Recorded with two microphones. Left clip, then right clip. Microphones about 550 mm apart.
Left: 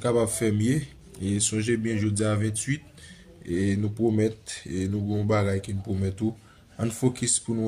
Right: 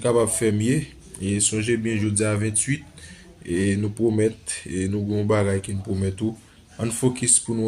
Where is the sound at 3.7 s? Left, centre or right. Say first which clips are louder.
Right 3 dB; left.